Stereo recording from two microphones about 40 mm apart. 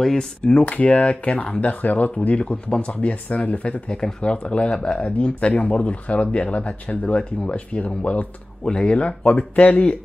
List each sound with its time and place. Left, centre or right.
0.0 s speech: centre
0.6 s speech: left
2.1 s speech: left
3.9 s speech: left